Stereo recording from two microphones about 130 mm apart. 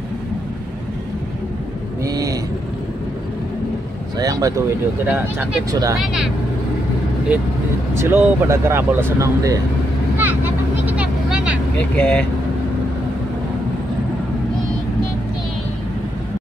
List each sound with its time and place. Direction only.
2.0 s vehicle: 30° right (ahead or behind)
4.2 s speech: 25° right (ahead or behind)
5.0 s speech: 15° right (ahead or behind)
5.7 s speech: 25° right (ahead or behind)
7.9 s speech: 20° right (ahead or behind)
10.1 s vehicle: 15° right (ahead or behind)
11.8 s speech: 10° left (ahead or behind)